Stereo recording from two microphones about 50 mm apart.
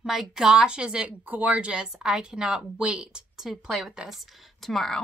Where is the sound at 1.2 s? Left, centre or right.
Right; by 3.4 s centre.